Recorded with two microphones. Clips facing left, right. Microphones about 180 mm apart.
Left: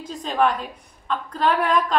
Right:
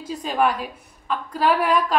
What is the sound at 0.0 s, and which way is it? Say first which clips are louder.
A woman's voice: even; 5° right (ahead or behind).